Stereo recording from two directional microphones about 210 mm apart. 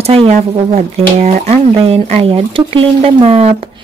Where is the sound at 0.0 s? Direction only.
30° right (ahead or behind).